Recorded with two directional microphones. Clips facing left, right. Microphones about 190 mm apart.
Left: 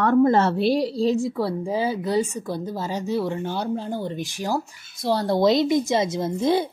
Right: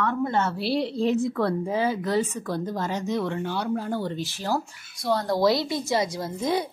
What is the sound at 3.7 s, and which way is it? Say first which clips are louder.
Speech: even; 20° left (ahead or behind).